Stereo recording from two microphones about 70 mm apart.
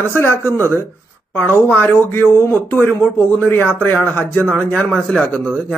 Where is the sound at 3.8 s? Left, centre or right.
Left.